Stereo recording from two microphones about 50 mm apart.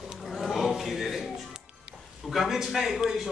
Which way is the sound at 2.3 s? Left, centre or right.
Centre.